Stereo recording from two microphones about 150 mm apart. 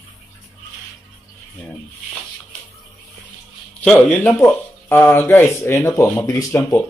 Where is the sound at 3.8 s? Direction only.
10° left (ahead or behind).